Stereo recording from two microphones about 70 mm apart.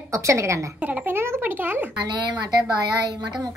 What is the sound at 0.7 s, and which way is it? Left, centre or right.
A child's voice, right.